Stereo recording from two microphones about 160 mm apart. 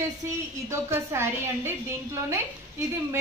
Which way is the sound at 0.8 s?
15° right (ahead or behind).